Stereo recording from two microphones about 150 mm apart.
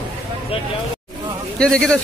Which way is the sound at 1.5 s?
5° left (ahead or behind).